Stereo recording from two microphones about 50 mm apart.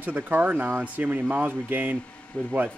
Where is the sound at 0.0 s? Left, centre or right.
Right.